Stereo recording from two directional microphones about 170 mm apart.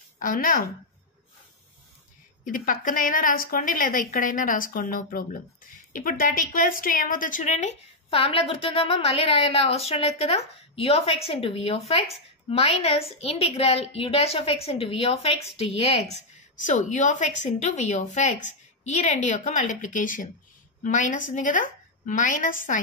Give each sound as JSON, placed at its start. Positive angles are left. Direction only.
{"t": 0.2, "sound": "a woman's voice", "side_deg": 55}
{"t": 2.4, "sound": "a woman's voice", "side_deg": 55}
{"t": 16.2, "sound": "a woman's voice", "side_deg": 45}